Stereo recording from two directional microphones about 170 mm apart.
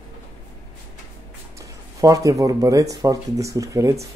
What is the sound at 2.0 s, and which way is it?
Speech, 20° right (ahead or behind).